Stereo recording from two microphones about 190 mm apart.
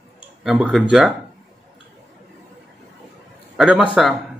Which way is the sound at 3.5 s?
5° right (ahead or behind).